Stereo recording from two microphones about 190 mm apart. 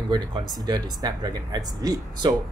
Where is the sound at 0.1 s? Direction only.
25° right (ahead or behind).